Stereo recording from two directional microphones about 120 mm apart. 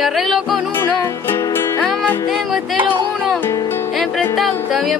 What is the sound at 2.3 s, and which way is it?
Music, centre (ahead or behind).